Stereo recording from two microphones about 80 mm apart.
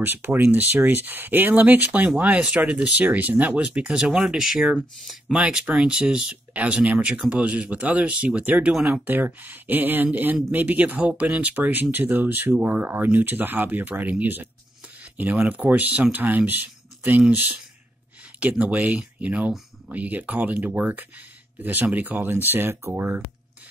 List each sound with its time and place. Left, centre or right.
0.0 s speech: right; by 5.4 s centre
5.4 s speech: centre